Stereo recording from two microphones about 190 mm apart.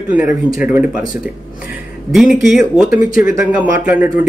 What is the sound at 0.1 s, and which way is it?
Speech, 10° right (ahead or behind).